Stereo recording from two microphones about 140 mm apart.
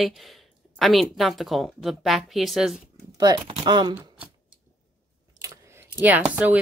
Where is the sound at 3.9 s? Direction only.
15° right (ahead or behind).